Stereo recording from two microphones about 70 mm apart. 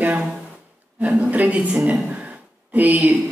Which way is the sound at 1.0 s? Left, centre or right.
Right.